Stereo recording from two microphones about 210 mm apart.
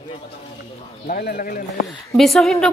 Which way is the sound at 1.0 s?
45° left (ahead or behind).